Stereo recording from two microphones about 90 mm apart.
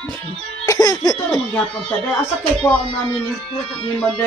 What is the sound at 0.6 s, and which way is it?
Cough, 45° left (ahead or behind).